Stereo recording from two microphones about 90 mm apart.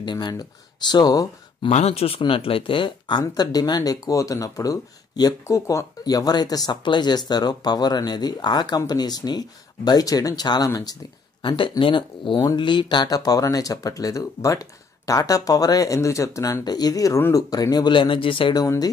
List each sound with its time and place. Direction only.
0.0 s speech: 50° left (ahead or behind)
1.6 s speech: 85° left; by 5.3 s 45° left (ahead or behind)
5.4 s speech: 35° left (ahead or behind); by 10.7 s 50° left (ahead or behind)
11.4 s speech: 65° left (ahead or behind); by 17.9 s 45° left (ahead or behind)
17.9 s speech: 70° left (ahead or behind)